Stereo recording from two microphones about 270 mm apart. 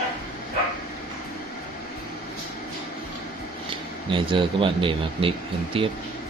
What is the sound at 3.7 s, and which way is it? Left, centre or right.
Speech, centre.